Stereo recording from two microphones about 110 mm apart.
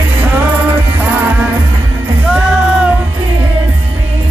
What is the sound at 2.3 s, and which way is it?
Music, 10° right (ahead or behind).